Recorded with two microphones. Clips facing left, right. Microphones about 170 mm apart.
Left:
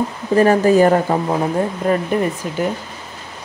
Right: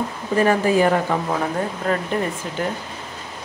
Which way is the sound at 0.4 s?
40° left (ahead or behind).